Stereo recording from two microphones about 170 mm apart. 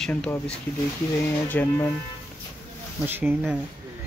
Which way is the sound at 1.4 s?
10° left (ahead or behind).